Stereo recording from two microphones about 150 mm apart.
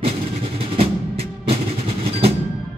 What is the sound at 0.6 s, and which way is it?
Music, 40° right (ahead or behind).